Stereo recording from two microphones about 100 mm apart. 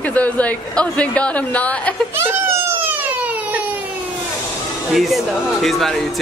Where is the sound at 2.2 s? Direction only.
20° right (ahead or behind).